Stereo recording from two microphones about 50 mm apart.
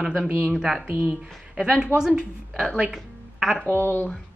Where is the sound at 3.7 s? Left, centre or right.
Left.